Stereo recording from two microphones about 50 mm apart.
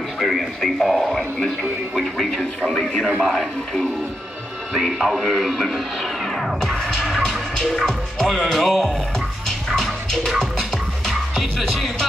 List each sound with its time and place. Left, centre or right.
0.2 s speech: centre
2.6 s a sound: centre
3.2 s speech: centre
6.6 s music: centre
7.0 s music: centre
7.7 s music: centre
8.4 s speech: centre
9.8 s music: centre